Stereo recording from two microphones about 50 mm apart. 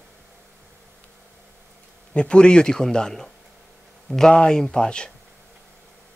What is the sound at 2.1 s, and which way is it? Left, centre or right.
A man's voice, left.